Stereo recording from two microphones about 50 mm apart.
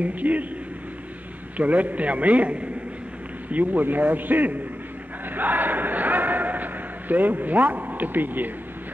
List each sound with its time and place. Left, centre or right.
0.0 s a man's voice: right
1.6 s a man's voice: right